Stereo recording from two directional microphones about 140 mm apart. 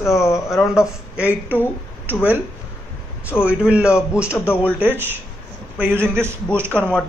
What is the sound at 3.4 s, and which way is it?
Speech, 10° right (ahead or behind).